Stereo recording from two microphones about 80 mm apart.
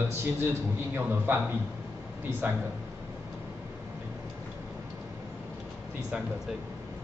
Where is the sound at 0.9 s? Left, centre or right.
Right.